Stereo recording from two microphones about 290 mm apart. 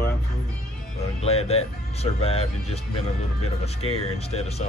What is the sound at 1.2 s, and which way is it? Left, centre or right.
Speech, left.